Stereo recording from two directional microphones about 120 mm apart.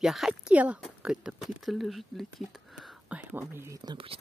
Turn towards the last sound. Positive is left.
turn(degrees=-35)  # may be behind; listen again after turning